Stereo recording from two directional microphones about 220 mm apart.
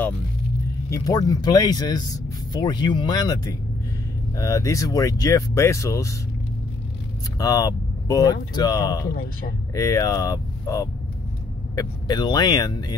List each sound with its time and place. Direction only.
0.8 s speech: 15° left (ahead or behind)
7.3 s speech: 15° left (ahead or behind)